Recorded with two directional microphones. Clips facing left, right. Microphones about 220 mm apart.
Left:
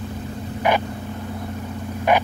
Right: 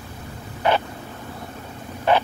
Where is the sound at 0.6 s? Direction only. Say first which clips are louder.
Even; 15° left (ahead or behind).